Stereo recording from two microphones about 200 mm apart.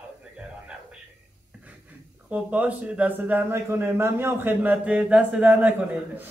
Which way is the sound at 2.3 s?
5° right (ahead or behind).